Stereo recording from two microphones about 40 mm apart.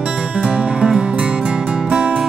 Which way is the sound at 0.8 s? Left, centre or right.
Right.